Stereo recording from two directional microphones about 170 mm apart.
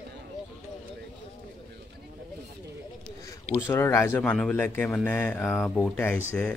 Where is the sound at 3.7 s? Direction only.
15° left (ahead or behind).